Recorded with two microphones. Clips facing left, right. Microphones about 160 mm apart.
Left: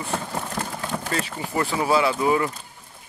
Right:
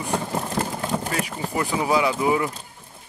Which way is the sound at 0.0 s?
15° right (ahead or behind).